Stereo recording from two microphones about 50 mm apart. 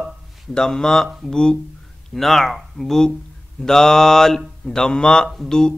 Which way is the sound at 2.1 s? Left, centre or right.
Centre.